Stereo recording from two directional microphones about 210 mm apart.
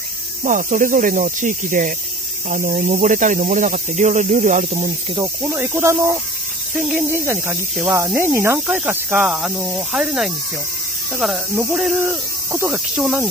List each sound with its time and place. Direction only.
0.4 s speech: 40° right (ahead or behind)
5.4 s speech: 10° right (ahead or behind)